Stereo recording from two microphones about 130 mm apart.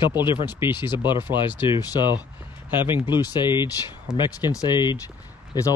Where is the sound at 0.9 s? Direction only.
35° left (ahead or behind).